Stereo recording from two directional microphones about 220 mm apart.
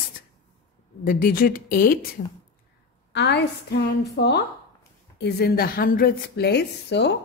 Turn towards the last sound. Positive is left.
turn(degrees=50)  # may be behind; listen again after turning